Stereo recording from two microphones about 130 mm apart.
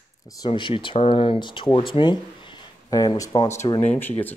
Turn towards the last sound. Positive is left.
turn(degrees=15)  # may be behind; listen again after turning